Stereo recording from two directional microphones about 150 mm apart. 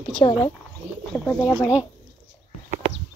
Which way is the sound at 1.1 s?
15° left (ahead or behind).